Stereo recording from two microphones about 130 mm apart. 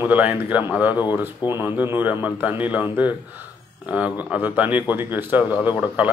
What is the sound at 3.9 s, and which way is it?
Speech, 10° right (ahead or behind).